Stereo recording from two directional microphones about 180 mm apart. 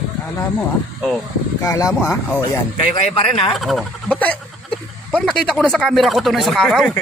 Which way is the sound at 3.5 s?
Centre (ahead or behind).